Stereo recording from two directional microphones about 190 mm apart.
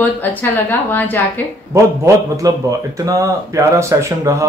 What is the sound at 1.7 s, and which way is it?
Speech, 15° right (ahead or behind).